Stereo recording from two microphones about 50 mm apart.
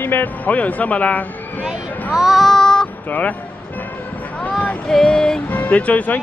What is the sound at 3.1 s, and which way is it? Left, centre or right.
Speech, left.